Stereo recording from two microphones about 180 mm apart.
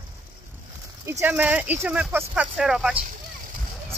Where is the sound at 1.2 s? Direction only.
10° right (ahead or behind).